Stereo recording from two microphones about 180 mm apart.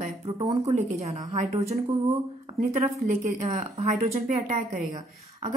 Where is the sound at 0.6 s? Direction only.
40° right (ahead or behind).